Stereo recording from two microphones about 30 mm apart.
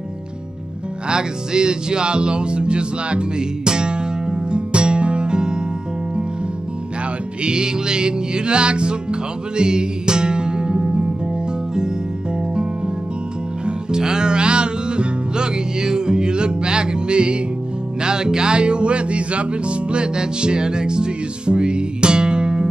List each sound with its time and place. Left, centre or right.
1.0 s music: right
7.4 s music: right
13.9 s music: right